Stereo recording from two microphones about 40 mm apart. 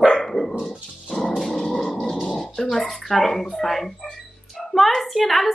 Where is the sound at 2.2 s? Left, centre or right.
Centre.